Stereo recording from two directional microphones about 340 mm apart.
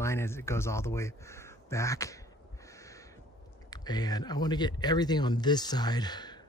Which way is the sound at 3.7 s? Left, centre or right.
Centre.